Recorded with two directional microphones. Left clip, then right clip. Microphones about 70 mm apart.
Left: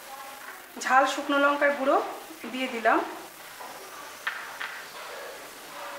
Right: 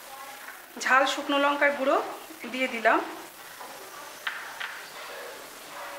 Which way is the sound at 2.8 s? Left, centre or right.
Right.